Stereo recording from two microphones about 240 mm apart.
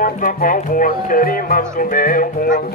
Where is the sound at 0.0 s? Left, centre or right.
Left.